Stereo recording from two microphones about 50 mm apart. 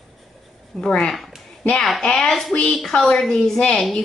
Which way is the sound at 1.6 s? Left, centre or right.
Left.